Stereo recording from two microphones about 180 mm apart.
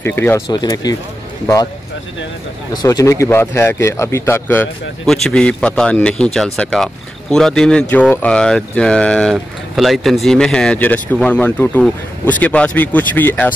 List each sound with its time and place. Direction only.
0.0 s speech: 10° left (ahead or behind)
0.5 s speech: 20° left (ahead or behind)
2.7 s speech: 20° left (ahead or behind)